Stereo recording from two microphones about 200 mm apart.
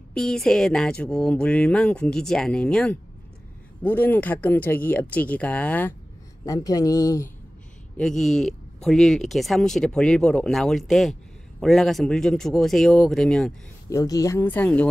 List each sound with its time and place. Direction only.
0.1 s speech: 5° left (ahead or behind)
8.0 s speech: centre (ahead or behind)
13.8 s speech: 15° left (ahead or behind)